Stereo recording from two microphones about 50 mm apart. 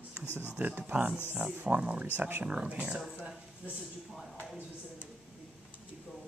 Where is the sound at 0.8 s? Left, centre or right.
Right.